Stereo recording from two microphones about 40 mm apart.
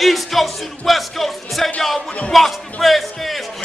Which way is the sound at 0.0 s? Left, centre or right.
Centre.